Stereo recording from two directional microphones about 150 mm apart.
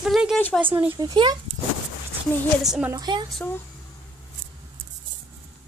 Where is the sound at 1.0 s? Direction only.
25° right (ahead or behind).